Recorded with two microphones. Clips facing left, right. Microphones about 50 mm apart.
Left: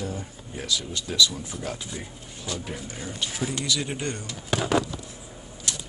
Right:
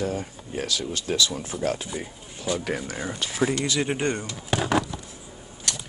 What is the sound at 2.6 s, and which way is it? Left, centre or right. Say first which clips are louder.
Speech: right 6 dB; right.